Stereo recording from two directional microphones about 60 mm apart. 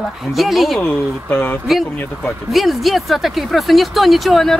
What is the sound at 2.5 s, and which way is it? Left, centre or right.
Speech, centre.